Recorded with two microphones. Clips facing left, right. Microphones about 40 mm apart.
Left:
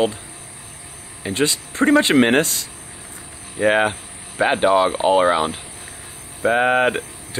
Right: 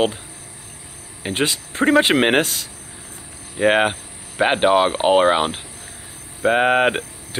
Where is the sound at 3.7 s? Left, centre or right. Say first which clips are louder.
Even; right.